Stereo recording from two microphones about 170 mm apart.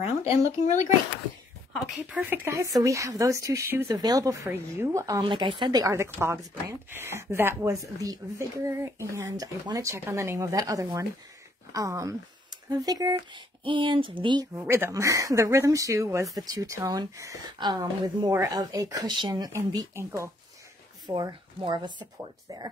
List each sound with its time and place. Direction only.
0.7 s a child's voice: 45° left (ahead or behind)
2.0 s speech: 10° right (ahead or behind)
5.2 s speech: 30° right (ahead or behind)